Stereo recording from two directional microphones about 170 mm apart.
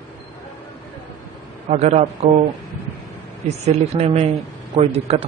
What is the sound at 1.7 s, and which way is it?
Speech, 40° right (ahead or behind).